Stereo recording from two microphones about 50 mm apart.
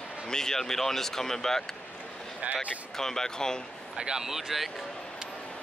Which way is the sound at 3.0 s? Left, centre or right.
Centre.